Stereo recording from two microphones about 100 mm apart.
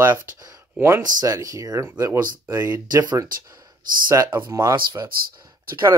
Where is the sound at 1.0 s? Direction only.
35° right (ahead or behind).